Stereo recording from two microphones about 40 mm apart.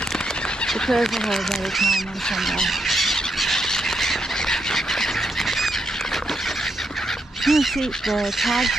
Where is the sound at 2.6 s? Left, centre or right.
Centre.